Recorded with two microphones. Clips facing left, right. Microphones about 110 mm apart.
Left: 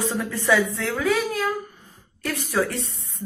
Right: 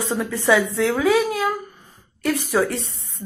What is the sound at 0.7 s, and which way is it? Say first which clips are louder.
Speech: right 5 dB; 10° right (ahead or behind).